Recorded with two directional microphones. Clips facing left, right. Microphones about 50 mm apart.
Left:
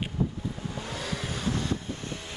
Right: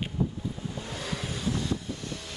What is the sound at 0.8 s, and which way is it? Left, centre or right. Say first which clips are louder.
Vehicle: left 1 dB; left.